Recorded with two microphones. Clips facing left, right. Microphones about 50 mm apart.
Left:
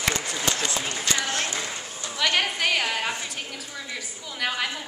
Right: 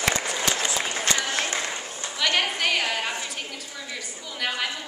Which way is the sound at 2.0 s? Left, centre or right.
Centre.